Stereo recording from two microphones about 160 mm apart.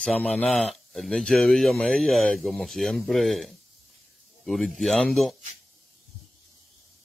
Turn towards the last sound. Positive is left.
turn(degrees=0)  # may be behind; listen again after turning